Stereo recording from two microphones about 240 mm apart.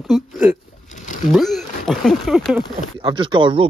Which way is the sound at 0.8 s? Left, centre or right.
Left.